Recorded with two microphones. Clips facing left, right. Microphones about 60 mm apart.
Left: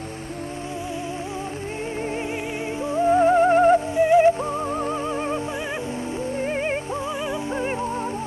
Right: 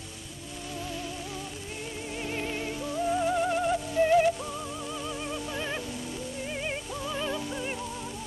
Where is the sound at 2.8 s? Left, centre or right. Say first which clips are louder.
Left 11 dB; left.